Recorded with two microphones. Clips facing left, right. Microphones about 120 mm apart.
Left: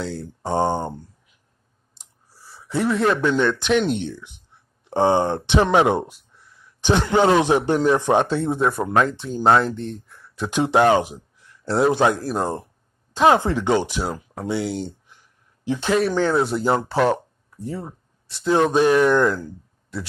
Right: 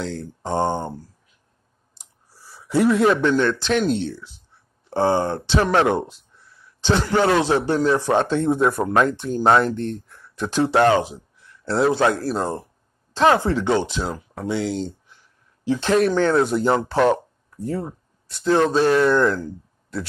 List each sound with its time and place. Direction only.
0.0 s speech: 10° left (ahead or behind)
2.0 s a sound: 5° right (ahead or behind); by 3.7 s 15° left (ahead or behind)
3.8 s speech: 15° left (ahead or behind)
8.4 s speech: centre (ahead or behind)
10.5 s speech: 15° left (ahead or behind)
15.0 s a sound: 15° left (ahead or behind)
15.9 s speech: 5° left (ahead or behind)